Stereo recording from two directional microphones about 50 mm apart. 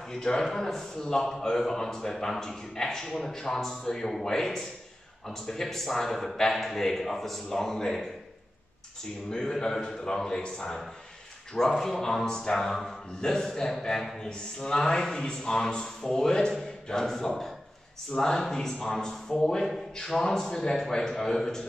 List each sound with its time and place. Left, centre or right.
0.1 s a man's voice: centre
9.3 s speech: centre
11.7 s speech: centre